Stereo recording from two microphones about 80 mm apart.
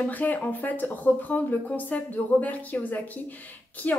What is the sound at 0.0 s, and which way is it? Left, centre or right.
Speech, left.